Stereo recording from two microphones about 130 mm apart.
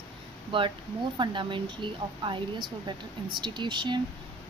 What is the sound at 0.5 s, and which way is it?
A woman's voice, 40° right (ahead or behind).